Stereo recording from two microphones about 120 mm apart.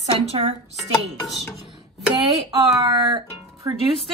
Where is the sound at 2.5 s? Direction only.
40° right (ahead or behind).